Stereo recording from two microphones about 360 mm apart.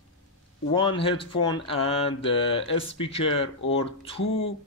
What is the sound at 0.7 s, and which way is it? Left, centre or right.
Speech, centre.